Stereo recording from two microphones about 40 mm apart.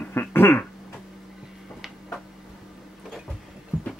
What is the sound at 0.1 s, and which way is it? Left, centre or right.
Cough, left.